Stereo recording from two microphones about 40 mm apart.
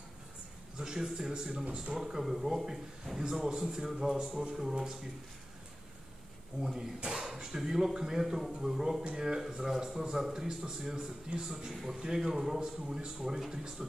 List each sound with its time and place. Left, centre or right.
0.7 s speech: centre
1.5 s speech: right
6.6 s speech: centre
9.1 s a man's voice: centre